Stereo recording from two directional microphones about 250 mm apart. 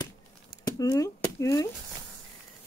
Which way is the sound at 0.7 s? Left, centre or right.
Centre.